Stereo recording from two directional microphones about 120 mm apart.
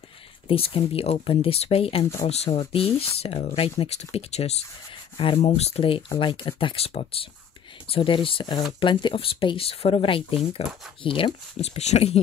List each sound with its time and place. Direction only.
0.5 s speech: 50° left (ahead or behind); by 12.2 s 65° left (ahead or behind)